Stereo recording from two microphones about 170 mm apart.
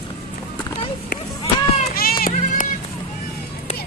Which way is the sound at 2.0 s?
60° left (ahead or behind).